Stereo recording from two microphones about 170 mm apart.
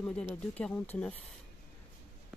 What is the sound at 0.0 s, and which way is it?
Speech, 5° left (ahead or behind).